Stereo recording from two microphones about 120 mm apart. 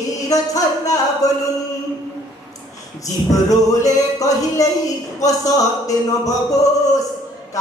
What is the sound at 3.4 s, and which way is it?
Music, 30° left (ahead or behind).